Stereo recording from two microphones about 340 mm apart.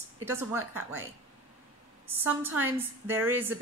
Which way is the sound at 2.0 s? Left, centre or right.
Centre.